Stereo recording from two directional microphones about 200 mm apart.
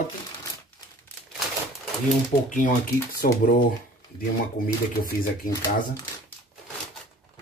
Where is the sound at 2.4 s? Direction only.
40° left (ahead or behind).